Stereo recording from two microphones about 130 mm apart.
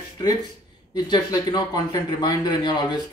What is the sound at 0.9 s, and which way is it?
Speech, 30° left (ahead or behind).